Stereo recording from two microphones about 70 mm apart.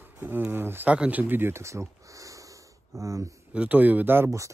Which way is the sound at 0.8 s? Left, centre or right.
Centre.